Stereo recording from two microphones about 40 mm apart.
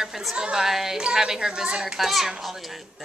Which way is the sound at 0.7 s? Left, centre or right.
Centre.